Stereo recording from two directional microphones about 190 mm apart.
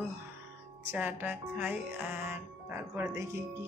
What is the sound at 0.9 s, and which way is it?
Speech, 10° right (ahead or behind).